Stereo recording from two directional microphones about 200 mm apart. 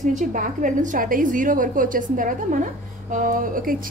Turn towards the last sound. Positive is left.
turn(degrees=-45)  # may be behind; listen again after turning